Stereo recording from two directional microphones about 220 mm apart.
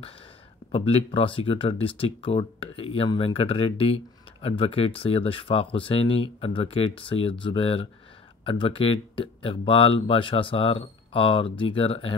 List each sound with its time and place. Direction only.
0.7 s speech: 25° left (ahead or behind)